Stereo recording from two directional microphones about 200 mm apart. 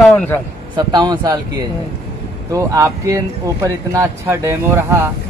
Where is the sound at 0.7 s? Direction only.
20° right (ahead or behind).